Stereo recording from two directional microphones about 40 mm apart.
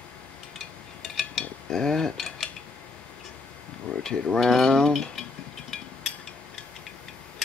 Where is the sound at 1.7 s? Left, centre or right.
Centre.